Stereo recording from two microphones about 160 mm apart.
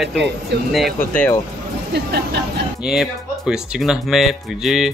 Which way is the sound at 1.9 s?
90° right.